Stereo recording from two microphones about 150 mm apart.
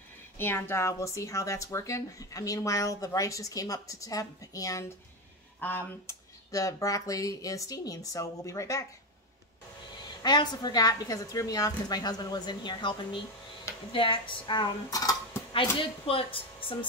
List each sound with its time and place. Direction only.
0.4 s speech: 15° left (ahead or behind)
10.2 s speech: 30° left (ahead or behind)
13.9 s dishes: 35° left (ahead or behind)
15.5 s speech: 35° left (ahead or behind)